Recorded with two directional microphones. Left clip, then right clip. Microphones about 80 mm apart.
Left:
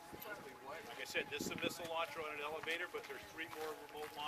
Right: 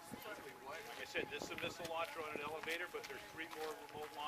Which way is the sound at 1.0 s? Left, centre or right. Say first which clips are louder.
Left 2 dB; left.